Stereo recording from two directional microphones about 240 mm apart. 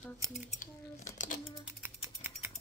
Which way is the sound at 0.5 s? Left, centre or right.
Left.